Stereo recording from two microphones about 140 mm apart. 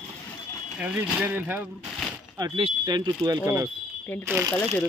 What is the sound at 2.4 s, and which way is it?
Speech, 30° right (ahead or behind).